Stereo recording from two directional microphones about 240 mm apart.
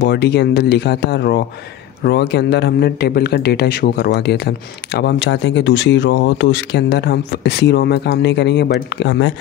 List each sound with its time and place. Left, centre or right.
0.0 s a man's voice: left